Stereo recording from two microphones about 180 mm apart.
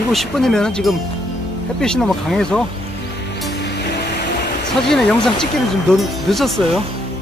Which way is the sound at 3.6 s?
70° left (ahead or behind).